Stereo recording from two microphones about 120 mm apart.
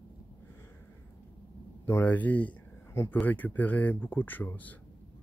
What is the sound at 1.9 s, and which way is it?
Speech, 15° left (ahead or behind).